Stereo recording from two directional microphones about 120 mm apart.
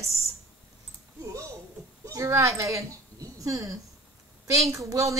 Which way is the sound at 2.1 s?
25° right (ahead or behind).